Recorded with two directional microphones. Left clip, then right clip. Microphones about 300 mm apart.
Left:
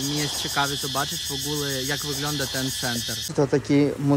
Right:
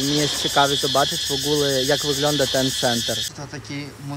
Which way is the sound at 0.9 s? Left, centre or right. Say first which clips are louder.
Right 7 dB; centre.